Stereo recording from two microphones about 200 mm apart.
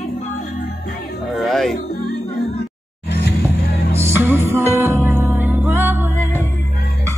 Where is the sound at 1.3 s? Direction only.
Centre (ahead or behind).